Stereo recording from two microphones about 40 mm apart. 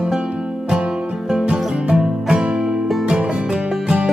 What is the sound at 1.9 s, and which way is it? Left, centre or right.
Music, centre.